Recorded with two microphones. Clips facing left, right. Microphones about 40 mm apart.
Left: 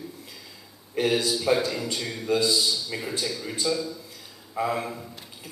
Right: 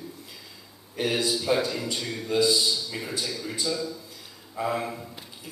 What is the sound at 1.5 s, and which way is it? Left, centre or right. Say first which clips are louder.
Speech: left 2 dB; left.